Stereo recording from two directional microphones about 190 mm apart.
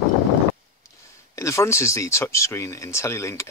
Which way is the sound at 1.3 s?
15° left (ahead or behind).